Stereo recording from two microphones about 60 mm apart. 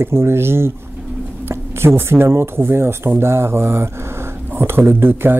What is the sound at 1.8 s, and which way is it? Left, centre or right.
Speech, right.